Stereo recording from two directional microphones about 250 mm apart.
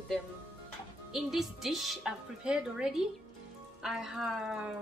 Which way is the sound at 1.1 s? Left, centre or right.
Centre.